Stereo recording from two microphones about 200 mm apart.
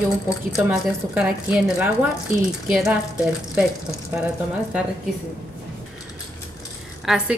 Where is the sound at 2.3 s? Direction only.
40° right (ahead or behind).